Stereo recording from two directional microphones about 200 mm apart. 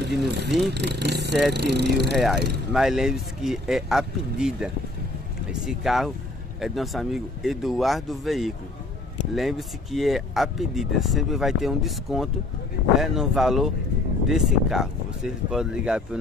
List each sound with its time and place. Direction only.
0.1 s speech: 55° right (ahead or behind)
2.7 s speech: centre (ahead or behind)